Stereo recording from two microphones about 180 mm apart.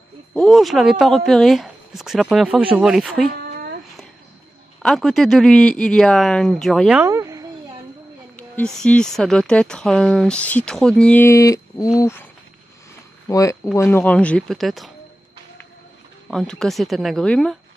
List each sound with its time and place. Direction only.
0.3 s speech: centre (ahead or behind)
4.8 s speech: centre (ahead or behind)
7.1 s a sound: 15° right (ahead or behind)
8.7 s speech: 5° left (ahead or behind)
13.3 s speech: 20° left (ahead or behind); by 14.9 s centre (ahead or behind)
16.3 s speech: 5° left (ahead or behind)